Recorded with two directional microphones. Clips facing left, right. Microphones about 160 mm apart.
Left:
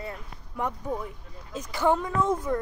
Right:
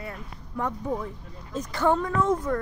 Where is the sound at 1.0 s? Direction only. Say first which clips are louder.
Right 3 dB; 5° left (ahead or behind).